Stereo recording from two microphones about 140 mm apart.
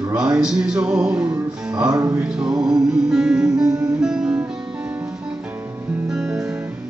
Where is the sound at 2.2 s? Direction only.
5° right (ahead or behind).